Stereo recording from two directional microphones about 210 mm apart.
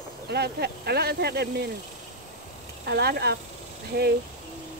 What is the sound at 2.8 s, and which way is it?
Speech, 50° right (ahead or behind).